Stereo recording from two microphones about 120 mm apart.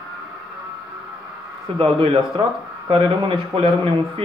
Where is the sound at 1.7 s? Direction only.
50° right (ahead or behind).